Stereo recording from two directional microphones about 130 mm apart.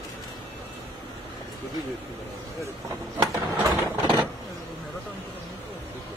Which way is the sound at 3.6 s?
35° right (ahead or behind).